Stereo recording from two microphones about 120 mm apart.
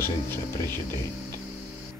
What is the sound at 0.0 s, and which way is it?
Speech, 20° left (ahead or behind).